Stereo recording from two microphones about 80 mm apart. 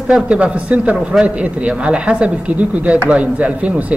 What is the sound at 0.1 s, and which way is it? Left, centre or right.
Speech, centre.